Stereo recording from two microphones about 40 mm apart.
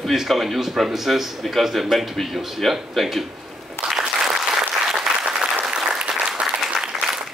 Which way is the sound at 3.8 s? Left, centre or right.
Left.